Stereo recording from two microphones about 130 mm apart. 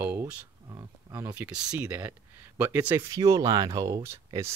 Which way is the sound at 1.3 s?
10° right (ahead or behind).